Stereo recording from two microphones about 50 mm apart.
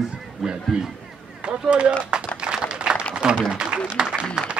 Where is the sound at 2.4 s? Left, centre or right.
Centre.